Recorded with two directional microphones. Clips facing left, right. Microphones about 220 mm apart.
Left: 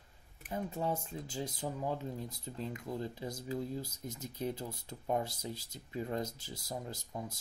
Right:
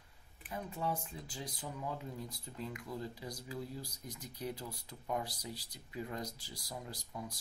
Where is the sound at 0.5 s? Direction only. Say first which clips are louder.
Left 3 dB; 25° left (ahead or behind).